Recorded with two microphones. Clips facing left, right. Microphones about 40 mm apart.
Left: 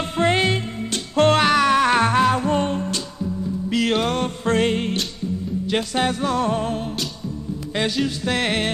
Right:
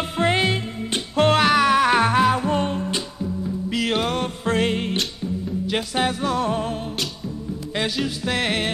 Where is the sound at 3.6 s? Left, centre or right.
Centre.